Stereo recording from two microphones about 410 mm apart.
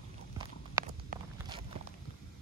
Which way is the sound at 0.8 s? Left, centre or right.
Centre.